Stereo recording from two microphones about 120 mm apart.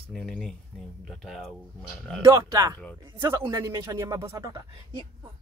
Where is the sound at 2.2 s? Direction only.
25° right (ahead or behind).